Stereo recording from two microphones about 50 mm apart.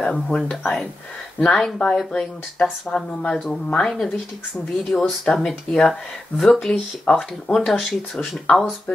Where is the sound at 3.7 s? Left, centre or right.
Centre.